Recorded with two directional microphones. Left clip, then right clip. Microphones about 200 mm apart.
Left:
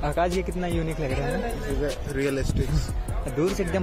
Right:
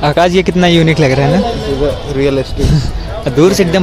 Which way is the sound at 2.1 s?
40° left (ahead or behind).